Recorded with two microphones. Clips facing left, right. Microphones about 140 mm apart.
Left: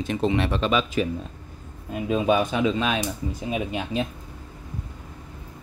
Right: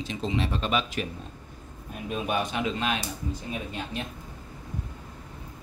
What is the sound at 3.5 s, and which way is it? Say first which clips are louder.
Speech: left 10 dB; 90° left.